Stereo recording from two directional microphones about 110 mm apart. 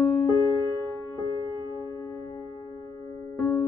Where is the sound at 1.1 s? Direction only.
30° left (ahead or behind).